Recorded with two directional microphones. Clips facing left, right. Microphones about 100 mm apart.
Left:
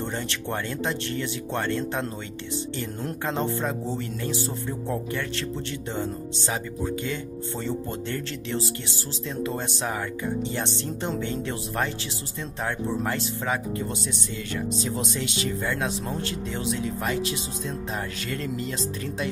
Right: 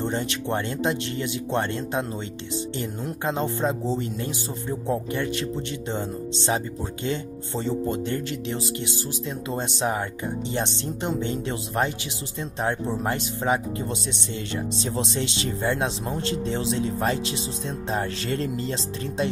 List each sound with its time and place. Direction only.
0.0 s speech: 15° right (ahead or behind)
14.8 s speech: 25° right (ahead or behind)